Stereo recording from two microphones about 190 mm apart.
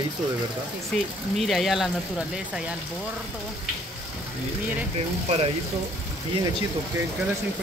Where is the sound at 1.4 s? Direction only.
Centre (ahead or behind).